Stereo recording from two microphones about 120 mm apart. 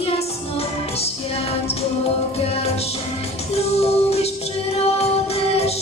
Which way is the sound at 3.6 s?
60° left (ahead or behind).